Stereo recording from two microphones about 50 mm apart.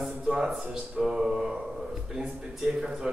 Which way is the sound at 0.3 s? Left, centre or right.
Centre.